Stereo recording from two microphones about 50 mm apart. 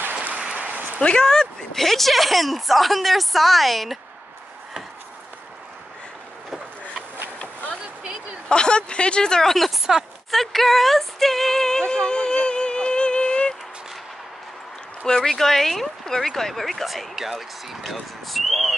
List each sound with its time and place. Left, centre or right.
0.1 s applause: right
0.6 s a sound: right
1.0 s speech: centre
8.5 s a woman's voice: centre
9.7 s speech: centre
10.3 s a sound: centre
15.0 s speech: centre